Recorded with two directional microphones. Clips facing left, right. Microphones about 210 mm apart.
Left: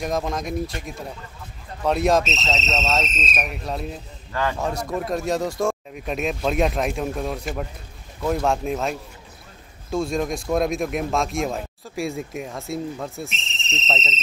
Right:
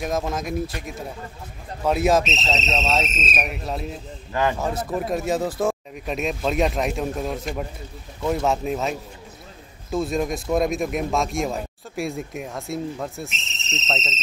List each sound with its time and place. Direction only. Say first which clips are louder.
0.0 s speech: even; 5° right (ahead or behind)
1.9 s speech: even; 5° right (ahead or behind)
2.6 s speech: even; 15° right (ahead or behind)
2.9 s speech: right 1 dB; centre (ahead or behind)
4.3 s speech: right 3 dB; 20° right (ahead or behind)
4.6 s speech: even; centre (ahead or behind)